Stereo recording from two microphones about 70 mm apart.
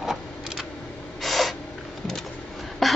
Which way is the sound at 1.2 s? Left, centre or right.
Centre.